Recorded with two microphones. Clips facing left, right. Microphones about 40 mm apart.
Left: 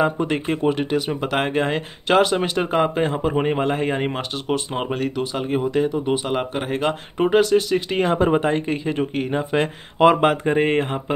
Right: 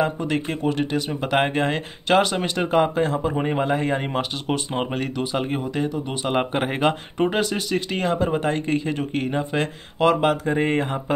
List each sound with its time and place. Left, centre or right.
0.3 s speech: centre
3.0 s speech: left
4.1 s speech: centre
5.6 s speech: centre
6.3 s speech: centre
7.2 s speech: centre
8.1 s speech: left
8.5 s speech: centre
9.9 s speech: left